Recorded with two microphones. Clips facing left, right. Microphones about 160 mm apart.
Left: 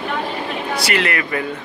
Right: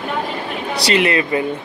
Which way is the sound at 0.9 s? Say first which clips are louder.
Right 7 dB; 20° right (ahead or behind).